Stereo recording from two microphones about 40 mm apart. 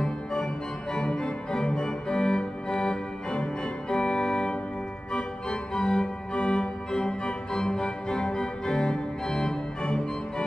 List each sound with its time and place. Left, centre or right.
0.0 s organ: left